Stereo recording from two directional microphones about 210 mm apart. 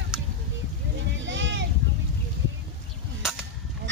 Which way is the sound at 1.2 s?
60° right (ahead or behind).